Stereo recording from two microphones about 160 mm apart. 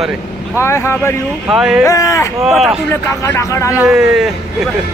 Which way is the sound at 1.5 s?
5° right (ahead or behind).